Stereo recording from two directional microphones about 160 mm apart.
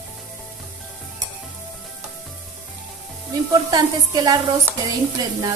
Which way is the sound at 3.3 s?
25° right (ahead or behind).